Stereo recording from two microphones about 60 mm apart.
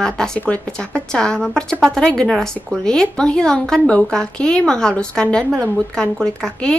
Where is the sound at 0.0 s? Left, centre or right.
Centre.